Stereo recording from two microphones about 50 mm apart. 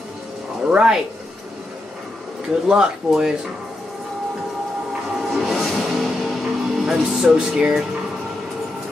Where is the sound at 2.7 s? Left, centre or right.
Centre.